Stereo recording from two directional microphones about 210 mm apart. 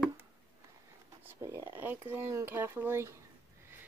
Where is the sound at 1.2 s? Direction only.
10° right (ahead or behind).